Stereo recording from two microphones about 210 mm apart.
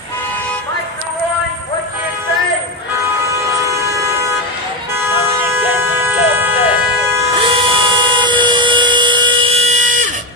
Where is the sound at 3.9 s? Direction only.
15° right (ahead or behind).